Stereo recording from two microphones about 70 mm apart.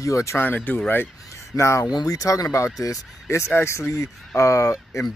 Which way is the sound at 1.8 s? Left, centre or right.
Left.